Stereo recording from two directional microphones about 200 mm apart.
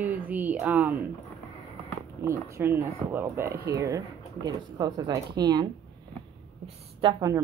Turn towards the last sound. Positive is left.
turn(degrees=-20)  # may be behind; listen again after turning